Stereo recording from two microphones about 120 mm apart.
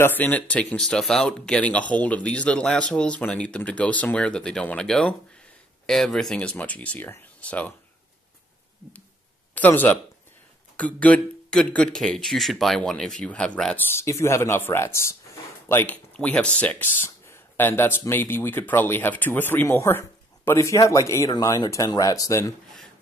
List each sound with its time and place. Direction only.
0.0 s speech: 15° left (ahead or behind)
9.6 s speech: 15° left (ahead or behind)
13.7 s speech: 25° left (ahead or behind)